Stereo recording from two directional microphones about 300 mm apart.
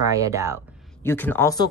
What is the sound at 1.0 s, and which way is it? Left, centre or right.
Speech, centre.